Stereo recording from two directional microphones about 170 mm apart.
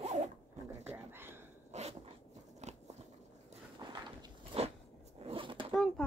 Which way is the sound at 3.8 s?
25° right (ahead or behind).